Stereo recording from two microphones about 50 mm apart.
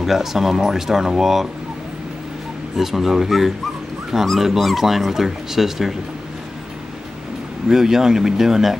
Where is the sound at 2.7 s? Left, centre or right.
Centre.